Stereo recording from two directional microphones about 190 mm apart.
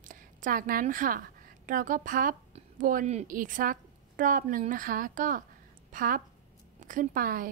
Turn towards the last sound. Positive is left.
turn(degrees=-50)  # may be behind; listen again after turning